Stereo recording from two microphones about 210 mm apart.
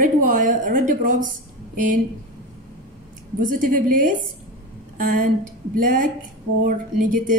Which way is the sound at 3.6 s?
40° right (ahead or behind).